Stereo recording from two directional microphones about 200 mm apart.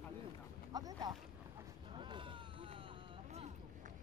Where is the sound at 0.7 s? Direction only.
20° right (ahead or behind).